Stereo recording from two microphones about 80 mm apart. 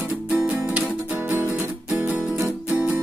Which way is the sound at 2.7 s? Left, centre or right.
Centre.